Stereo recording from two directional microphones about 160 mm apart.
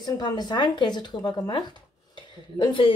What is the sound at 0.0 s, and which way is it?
Speech, 25° left (ahead or behind).